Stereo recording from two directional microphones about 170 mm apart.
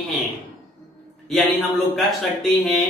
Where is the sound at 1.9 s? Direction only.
Centre (ahead or behind).